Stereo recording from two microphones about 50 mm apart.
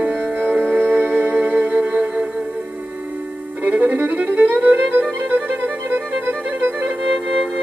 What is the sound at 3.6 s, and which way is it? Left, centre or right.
Violin, right.